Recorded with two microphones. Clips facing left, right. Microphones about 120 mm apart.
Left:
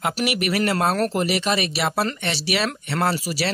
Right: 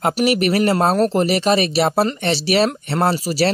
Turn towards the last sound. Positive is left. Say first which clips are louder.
# right 5 dB
turn(degrees=-30)  # may be behind; listen again after turning